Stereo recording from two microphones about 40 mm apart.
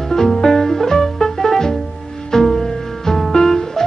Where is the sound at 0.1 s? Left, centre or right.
Centre.